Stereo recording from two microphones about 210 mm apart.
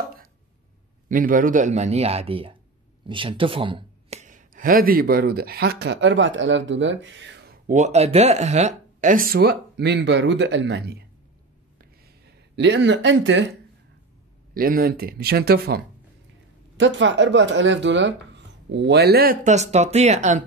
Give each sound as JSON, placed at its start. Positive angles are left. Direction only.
{"t": 1.0, "sound": "speech", "side_deg": -40}
{"t": 7.6, "sound": "speech", "side_deg": -35}
{"t": 11.8, "sound": "a sound", "side_deg": -55}
{"t": 14.5, "sound": "speech", "side_deg": -45}
{"t": 16.7, "sound": "speech", "side_deg": -60}